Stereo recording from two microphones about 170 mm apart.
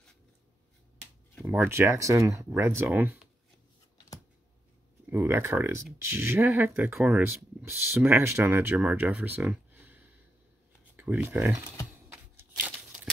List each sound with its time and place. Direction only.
1.4 s speech: 15° right (ahead or behind)
5.1 s speech: 15° right (ahead or behind)
12.1 s a sound: 15° right (ahead or behind)